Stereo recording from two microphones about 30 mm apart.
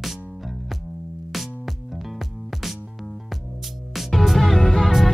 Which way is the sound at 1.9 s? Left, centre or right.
Centre.